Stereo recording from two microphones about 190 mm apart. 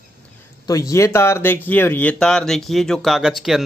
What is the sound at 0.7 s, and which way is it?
Speech, 20° left (ahead or behind).